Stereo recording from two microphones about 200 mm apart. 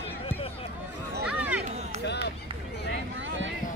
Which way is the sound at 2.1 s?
55° left (ahead or behind).